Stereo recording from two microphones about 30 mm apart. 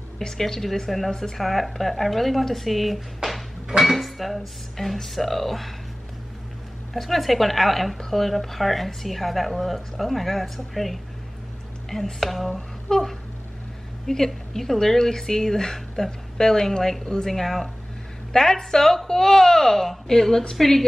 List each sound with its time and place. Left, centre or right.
0.4 s a woman's voice: centre
6.9 s a woman's voice: centre
14.0 s speech: centre
17.3 s speech: centre
18.3 s speech: left